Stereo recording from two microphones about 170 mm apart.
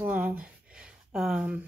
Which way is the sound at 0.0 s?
10° right (ahead or behind).